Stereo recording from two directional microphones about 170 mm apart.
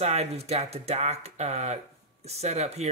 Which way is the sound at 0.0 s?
40° right (ahead or behind).